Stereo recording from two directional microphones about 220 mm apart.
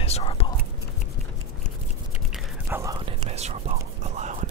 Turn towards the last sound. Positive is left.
turn(degrees=-30)  # may be behind; listen again after turning